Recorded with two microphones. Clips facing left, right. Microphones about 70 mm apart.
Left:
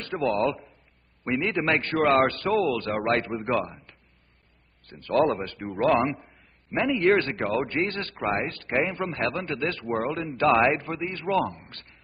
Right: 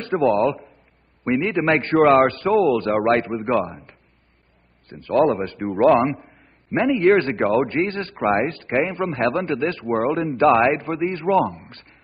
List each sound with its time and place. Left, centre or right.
0.0 s a man's voice: right
4.8 s a man's voice: centre
5.9 s a man's voice: centre
8.6 s a man's voice: centre
10.1 s a man's voice: right
10.5 s a man's voice: centre; by 11.3 s right
11.3 s a man's voice: centre